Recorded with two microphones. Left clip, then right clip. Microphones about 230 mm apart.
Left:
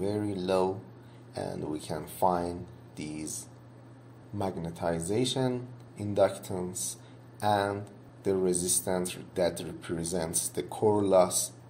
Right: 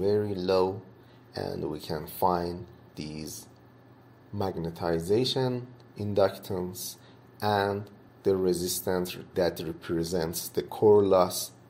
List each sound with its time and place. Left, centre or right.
0.0 s speech: right
4.4 s speech: right